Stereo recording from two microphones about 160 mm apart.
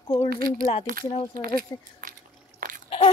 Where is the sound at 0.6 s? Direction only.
40° left (ahead or behind).